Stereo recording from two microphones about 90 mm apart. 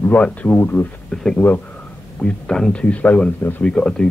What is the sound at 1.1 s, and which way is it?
Speech, 5° left (ahead or behind).